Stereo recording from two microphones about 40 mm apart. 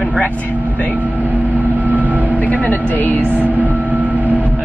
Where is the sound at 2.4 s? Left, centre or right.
Left.